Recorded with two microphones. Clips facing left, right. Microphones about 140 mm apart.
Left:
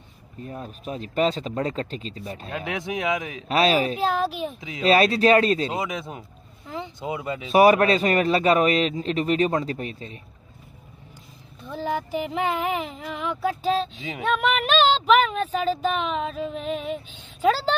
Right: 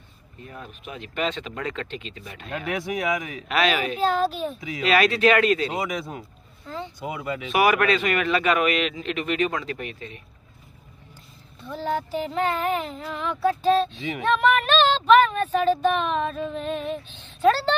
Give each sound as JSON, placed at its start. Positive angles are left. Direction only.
{"t": 0.5, "sound": "speech", "side_deg": 40}
{"t": 2.5, "sound": "speech", "side_deg": 20}
{"t": 3.4, "sound": "speech", "side_deg": 35}
{"t": 4.2, "sound": "speech", "side_deg": 10}
{"t": 11.6, "sound": "speech", "side_deg": 15}